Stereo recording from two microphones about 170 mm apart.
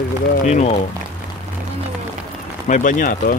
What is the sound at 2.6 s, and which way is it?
Speech, 50° left (ahead or behind).